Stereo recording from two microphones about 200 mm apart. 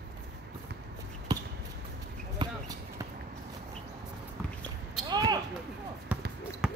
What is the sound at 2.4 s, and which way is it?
Basketball bounce, 20° right (ahead or behind).